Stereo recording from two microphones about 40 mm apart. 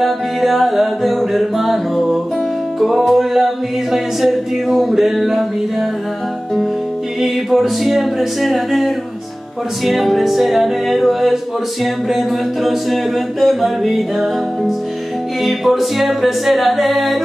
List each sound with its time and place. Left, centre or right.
0.0 s music: centre
7.2 s music: centre
15.4 s music: centre